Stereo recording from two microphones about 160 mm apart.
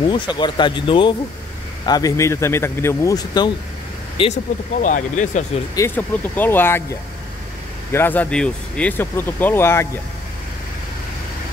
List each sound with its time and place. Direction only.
0.1 s speech: 30° left (ahead or behind)
4.2 s speech: 35° left (ahead or behind)
4.8 s speech: 50° left (ahead or behind)
5.8 s speech: 10° left (ahead or behind)